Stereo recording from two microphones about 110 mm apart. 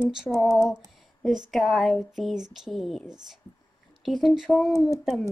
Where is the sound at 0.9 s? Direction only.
Centre (ahead or behind).